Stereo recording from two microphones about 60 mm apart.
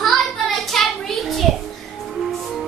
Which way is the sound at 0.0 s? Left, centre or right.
Centre.